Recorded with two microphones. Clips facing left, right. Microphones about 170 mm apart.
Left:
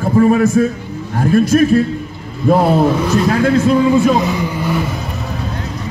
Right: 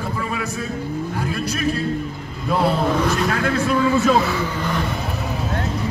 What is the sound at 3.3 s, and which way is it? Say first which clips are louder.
Speech: left 8 dB; 30° left (ahead or behind).